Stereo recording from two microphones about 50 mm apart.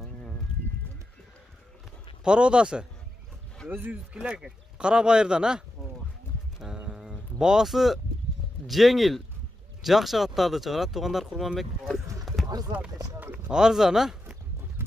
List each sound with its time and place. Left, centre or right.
2.2 s a man's voice: right
3.7 s speech: right
4.1 s a man's voice: right
6.6 s a sound: centre
8.6 s speech: centre
11.9 s a sound: centre
13.3 s speech: centre
14.8 s clip-clop: right